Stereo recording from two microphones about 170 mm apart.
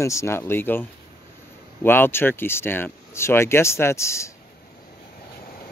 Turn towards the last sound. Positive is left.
turn(degrees=15)  # may be behind; listen again after turning